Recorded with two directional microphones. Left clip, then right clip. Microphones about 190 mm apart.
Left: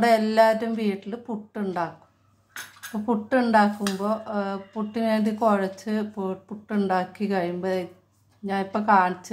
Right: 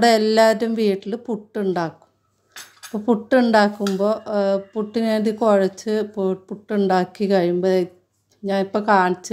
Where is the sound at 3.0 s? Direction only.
35° right (ahead or behind).